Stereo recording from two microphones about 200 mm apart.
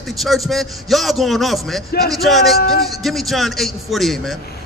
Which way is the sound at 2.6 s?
50° left (ahead or behind).